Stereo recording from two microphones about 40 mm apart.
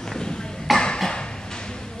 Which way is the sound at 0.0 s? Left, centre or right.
Centre.